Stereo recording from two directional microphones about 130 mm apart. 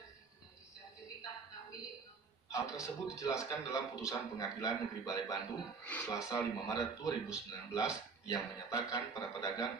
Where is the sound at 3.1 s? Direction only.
25° left (ahead or behind).